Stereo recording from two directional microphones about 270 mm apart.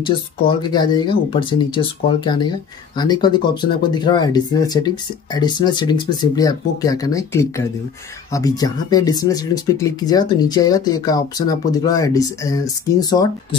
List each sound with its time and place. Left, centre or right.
0.0 s speech: centre